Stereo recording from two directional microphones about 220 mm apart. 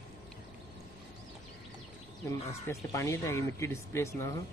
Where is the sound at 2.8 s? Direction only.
15° left (ahead or behind).